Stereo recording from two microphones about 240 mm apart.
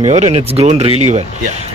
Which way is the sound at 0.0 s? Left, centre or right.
Right.